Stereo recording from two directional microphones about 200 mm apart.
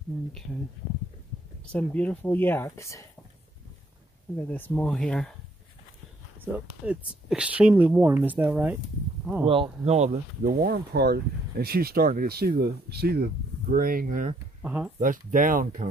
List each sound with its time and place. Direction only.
1.7 s speech: 5° left (ahead or behind)
4.4 s speech: 10° left (ahead or behind)
6.4 s speech: 5° right (ahead or behind)
9.5 s speech: 30° right (ahead or behind)
10.6 s speech: 55° right (ahead or behind)
14.6 s speech: 5° right (ahead or behind)
15.0 s speech: 40° right (ahead or behind)